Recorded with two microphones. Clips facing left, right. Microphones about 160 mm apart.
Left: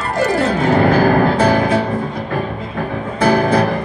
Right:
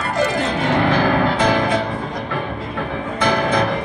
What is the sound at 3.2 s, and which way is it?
Music, 35° left (ahead or behind).